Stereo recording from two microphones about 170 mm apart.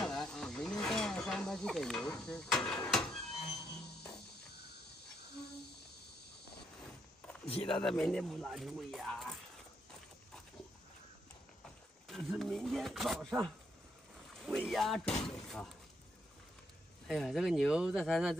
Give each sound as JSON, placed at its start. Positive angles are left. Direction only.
{"t": 0.0, "sound": "a sound", "side_deg": 5}
{"t": 3.7, "sound": "music", "side_deg": 5}
{"t": 7.4, "sound": "speech", "side_deg": 35}
{"t": 7.8, "sound": "speech", "side_deg": 5}
{"t": 12.1, "sound": "a sound", "side_deg": 0}
{"t": 14.7, "sound": "speech", "side_deg": 0}
{"t": 17.1, "sound": "speech", "side_deg": 0}